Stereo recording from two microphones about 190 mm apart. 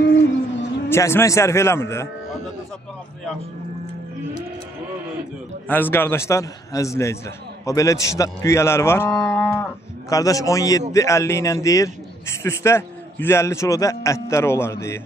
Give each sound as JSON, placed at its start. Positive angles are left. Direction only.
{"t": 0.0, "sound": "a sound", "side_deg": 75}
{"t": 0.8, "sound": "a man's voice", "side_deg": 15}
{"t": 5.7, "sound": "a man's voice", "side_deg": 10}